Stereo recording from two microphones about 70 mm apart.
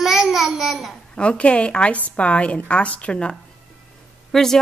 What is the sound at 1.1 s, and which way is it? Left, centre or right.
A woman's voice, centre.